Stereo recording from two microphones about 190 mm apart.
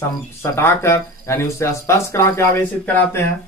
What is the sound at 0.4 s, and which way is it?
Speech, 15° left (ahead or behind).